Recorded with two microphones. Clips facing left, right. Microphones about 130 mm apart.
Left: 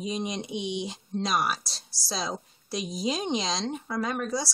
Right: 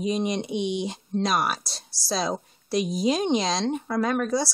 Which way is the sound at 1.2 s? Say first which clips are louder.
Right 3 dB; 55° right (ahead or behind).